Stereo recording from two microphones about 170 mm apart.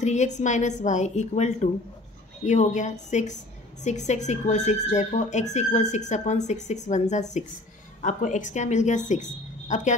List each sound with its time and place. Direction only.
0.0 s speech: 45° left (ahead or behind)